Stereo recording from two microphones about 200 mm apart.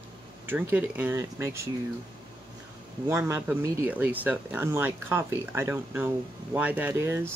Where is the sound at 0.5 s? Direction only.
10° right (ahead or behind).